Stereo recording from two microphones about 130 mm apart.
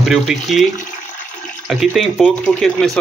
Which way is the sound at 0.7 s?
85° left.